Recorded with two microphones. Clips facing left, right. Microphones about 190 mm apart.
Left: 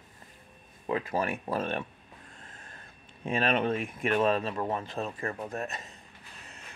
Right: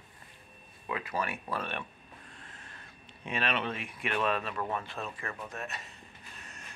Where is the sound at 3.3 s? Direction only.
45° left (ahead or behind).